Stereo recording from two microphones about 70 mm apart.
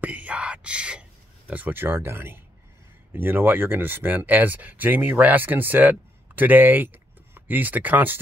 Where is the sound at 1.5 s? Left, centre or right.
Right.